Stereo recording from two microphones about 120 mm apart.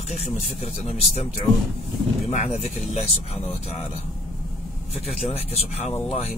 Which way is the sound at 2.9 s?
65° left (ahead or behind).